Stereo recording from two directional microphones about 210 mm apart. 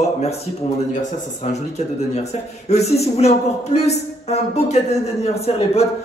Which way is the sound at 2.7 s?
30° left (ahead or behind).